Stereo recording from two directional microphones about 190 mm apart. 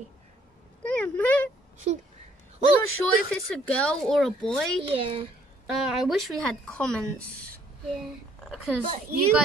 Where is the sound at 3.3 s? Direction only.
5° left (ahead or behind).